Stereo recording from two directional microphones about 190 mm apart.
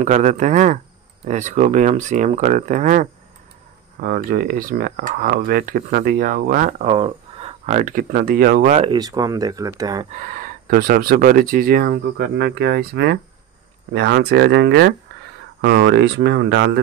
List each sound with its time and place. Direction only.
0.0 s speech: 40° right (ahead or behind)
6.9 s speech: 30° right (ahead or behind)
8.9 s speech: 20° right (ahead or behind)
10.1 s speech: 45° right (ahead or behind); by 16.8 s 70° right (ahead or behind)